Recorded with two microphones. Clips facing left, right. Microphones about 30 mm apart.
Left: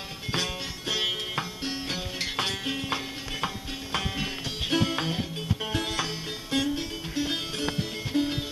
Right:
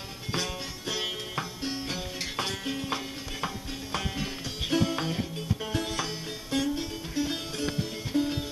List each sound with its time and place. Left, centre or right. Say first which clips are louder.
0.3 s music: left 2 dB; left